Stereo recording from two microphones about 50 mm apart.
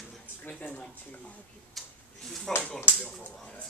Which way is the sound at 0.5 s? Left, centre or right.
Left.